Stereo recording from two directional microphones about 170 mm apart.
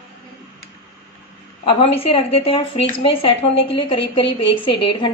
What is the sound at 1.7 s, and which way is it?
Speech, 35° left (ahead or behind).